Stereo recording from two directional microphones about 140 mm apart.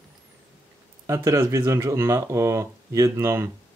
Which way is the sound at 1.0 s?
20° right (ahead or behind).